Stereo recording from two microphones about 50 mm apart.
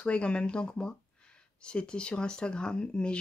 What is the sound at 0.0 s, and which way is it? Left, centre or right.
Speech, left.